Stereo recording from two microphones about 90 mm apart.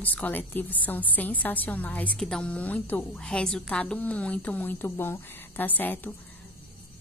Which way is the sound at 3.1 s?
10° left (ahead or behind).